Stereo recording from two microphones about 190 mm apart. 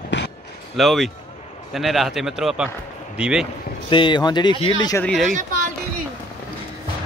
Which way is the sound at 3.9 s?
25° left (ahead or behind).